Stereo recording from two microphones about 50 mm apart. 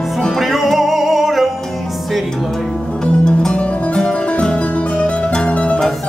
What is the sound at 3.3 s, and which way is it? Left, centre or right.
Music, centre.